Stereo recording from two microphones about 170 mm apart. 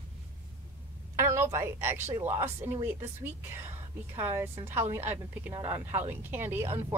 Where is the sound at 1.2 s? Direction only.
15° right (ahead or behind).